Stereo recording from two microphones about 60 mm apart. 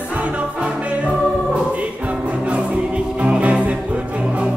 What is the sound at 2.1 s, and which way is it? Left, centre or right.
Music, centre.